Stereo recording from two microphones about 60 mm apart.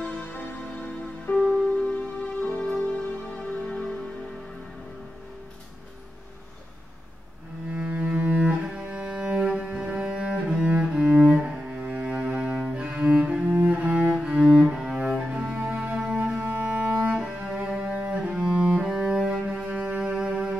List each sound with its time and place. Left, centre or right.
0.0 s music: left; by 3.8 s centre
7.7 s cello: right
8.4 s cello: centre
19.2 s music: centre